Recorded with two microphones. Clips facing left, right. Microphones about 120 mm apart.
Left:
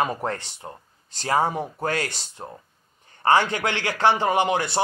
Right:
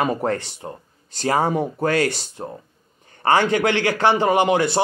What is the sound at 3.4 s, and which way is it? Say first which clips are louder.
Speech: right 7 dB; 60° right (ahead or behind).